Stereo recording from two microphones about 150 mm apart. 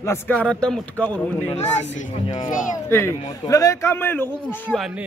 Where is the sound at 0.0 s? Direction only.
15° left (ahead or behind).